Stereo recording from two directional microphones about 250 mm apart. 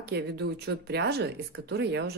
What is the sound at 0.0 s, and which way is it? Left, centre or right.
Speech, right.